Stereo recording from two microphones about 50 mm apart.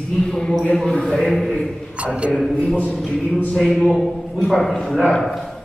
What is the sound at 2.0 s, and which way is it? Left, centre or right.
Speech, right.